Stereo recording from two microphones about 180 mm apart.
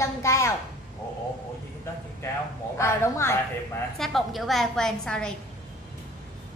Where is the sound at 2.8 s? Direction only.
15° left (ahead or behind).